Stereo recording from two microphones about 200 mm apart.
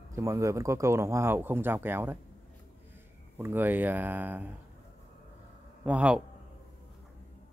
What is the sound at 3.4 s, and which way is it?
Speech, 10° right (ahead or behind).